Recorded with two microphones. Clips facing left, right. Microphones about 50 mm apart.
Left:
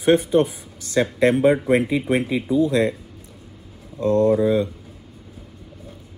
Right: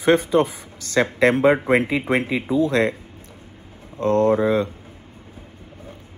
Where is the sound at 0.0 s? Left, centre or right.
Right.